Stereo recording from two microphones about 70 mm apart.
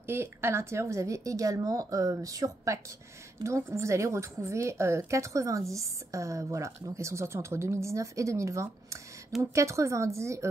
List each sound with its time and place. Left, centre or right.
0.0 s a woman's voice: right